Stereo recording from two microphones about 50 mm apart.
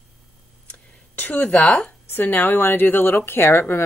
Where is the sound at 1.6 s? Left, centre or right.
Centre.